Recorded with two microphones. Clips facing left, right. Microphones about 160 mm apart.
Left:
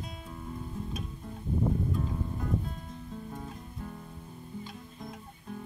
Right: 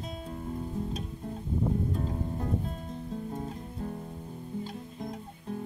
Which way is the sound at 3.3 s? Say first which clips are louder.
Right 5 dB; 35° right (ahead or behind).